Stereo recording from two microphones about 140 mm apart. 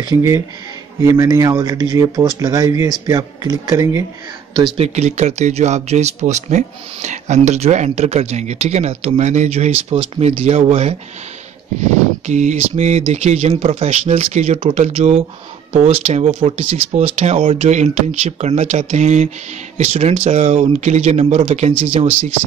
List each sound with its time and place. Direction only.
0.0 s speech: 25° right (ahead or behind)
4.7 s speech: 50° right (ahead or behind)
12.3 s speech: 55° right (ahead or behind)